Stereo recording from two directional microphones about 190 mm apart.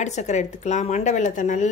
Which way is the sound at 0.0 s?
40° left (ahead or behind).